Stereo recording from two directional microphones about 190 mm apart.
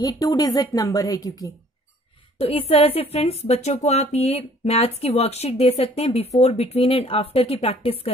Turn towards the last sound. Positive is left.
turn(degrees=30)  # may be behind; listen again after turning